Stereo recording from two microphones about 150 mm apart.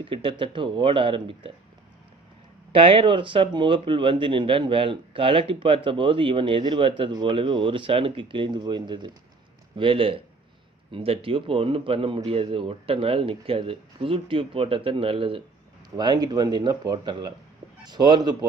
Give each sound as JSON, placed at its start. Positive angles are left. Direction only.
{"t": 0.0, "sound": "speech", "side_deg": -35}
{"t": 2.7, "sound": "speech", "side_deg": -35}